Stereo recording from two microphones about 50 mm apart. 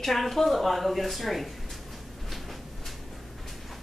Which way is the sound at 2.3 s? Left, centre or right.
Centre.